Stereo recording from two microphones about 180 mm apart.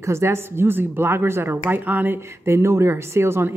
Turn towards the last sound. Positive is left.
turn(degrees=-15)  # may be behind; listen again after turning